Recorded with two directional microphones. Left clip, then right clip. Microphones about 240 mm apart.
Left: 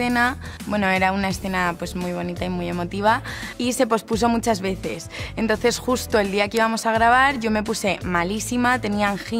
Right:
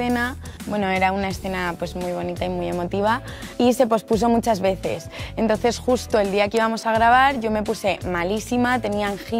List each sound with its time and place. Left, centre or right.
0.0 s speech: left
0.7 s speech: left
2.6 s speech: left
5.5 s speech: left
6.3 s speech: left
7.9 s speech: left